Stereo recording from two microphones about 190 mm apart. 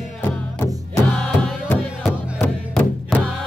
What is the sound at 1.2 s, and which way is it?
Music, 5° left (ahead or behind).